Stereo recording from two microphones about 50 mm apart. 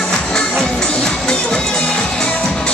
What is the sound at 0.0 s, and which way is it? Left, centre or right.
Music, centre.